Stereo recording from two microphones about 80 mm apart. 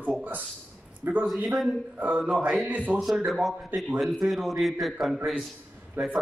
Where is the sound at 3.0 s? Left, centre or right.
Centre.